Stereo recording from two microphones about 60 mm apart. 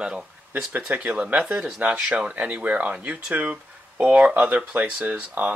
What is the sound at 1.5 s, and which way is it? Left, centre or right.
Speech, centre.